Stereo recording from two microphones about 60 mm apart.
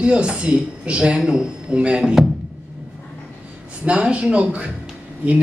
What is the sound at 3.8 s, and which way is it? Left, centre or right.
Speech, centre.